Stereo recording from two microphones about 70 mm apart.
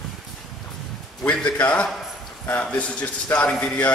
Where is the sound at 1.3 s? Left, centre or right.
Centre.